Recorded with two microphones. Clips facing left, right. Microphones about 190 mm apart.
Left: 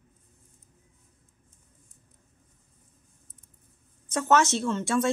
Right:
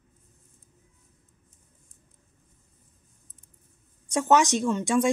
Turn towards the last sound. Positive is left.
turn(degrees=-15)  # may be behind; listen again after turning